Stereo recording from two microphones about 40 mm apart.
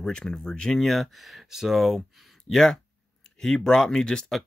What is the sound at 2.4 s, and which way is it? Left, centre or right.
Speech, centre.